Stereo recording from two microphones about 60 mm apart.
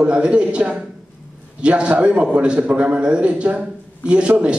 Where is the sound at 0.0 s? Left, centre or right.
Centre.